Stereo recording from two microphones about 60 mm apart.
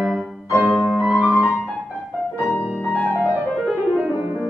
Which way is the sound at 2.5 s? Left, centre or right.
Left.